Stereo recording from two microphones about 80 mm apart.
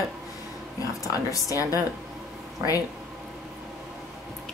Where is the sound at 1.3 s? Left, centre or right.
Left.